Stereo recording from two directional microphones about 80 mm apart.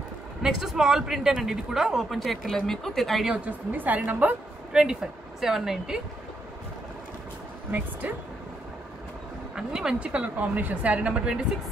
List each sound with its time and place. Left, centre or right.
0.4 s speech: centre
3.3 s a woman's voice: centre
5.4 s speech: centre
9.6 s a woman's voice: centre